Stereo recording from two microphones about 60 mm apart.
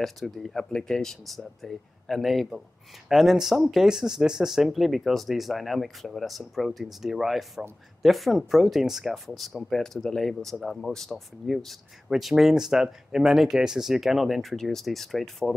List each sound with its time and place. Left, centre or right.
0.0 s speech: centre